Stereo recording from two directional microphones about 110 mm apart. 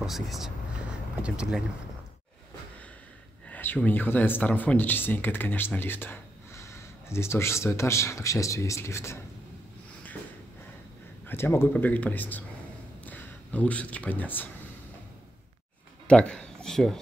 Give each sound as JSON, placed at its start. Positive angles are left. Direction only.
{"t": 0.0, "sound": "speech", "side_deg": -5}
{"t": 3.4, "sound": "speech", "side_deg": 15}
{"t": 11.2, "sound": "speech", "side_deg": 20}
{"t": 16.1, "sound": "speech", "side_deg": 10}